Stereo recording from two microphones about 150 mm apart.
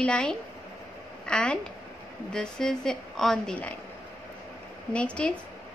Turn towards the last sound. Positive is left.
turn(degrees=5)  # may be behind; listen again after turning